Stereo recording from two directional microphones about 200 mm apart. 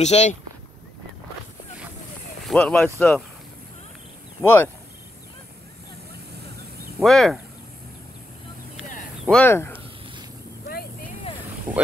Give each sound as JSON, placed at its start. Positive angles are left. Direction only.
{"t": 0.0, "sound": "speech", "side_deg": 35}
{"t": 2.4, "sound": "speech", "side_deg": 5}
{"t": 4.4, "sound": "speech", "side_deg": 10}
{"t": 7.0, "sound": "speech", "side_deg": 0}
{"t": 9.2, "sound": "speech", "side_deg": 5}